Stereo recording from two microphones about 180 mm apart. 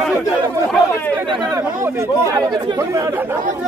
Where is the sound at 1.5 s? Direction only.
15° right (ahead or behind).